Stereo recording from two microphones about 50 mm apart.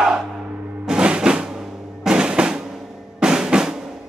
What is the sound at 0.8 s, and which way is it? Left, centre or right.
Music, centre.